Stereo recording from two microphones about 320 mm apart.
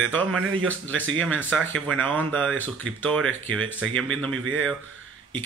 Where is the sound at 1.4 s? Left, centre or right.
Centre.